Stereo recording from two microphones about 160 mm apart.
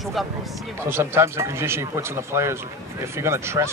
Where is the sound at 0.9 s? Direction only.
15° right (ahead or behind).